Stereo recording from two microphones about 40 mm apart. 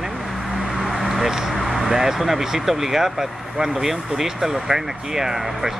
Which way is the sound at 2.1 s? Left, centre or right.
Centre.